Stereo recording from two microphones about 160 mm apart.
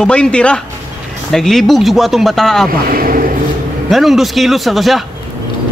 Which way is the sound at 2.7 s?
65° right (ahead or behind).